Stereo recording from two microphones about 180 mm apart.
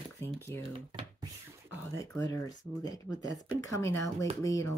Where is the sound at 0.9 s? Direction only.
25° right (ahead or behind).